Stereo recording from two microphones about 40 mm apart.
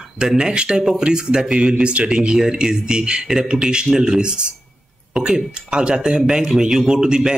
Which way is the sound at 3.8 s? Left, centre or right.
Centre.